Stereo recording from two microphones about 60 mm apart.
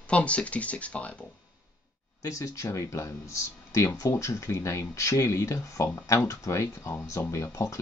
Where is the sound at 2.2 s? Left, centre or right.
Left.